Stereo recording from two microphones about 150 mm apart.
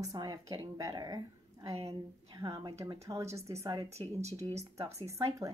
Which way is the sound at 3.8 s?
45° right (ahead or behind).